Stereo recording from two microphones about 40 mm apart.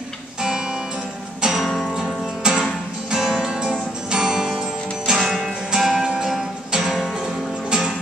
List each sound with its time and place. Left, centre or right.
0.4 s music: centre
1.7 s music: centre
2.0 s music: centre
5.2 s music: centre
5.8 s music: centre